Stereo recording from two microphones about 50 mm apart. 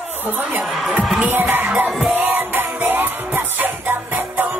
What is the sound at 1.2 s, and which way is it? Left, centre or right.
Music, right.